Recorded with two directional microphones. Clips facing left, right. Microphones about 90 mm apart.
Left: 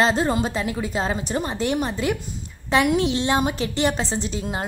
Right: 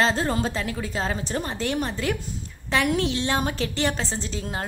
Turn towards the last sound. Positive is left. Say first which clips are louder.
# left 4 dB
turn(degrees=15)  # may be behind; listen again after turning